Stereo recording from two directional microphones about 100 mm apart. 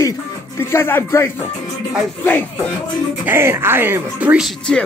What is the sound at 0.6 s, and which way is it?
Music, 25° left (ahead or behind).